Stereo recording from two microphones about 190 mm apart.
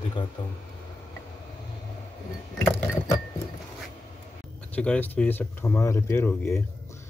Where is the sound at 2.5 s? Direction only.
15° left (ahead or behind).